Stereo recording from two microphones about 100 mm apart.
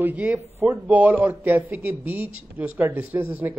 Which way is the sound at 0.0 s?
20° right (ahead or behind).